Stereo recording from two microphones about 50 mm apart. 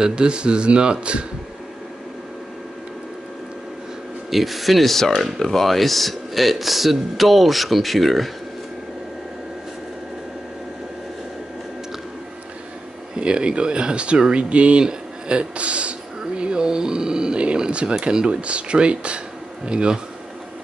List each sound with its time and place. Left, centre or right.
0.0 s speech: centre
4.3 s speech: centre
13.1 s a man's voice: centre
16.2 s a sound: centre
18.0 s speech: centre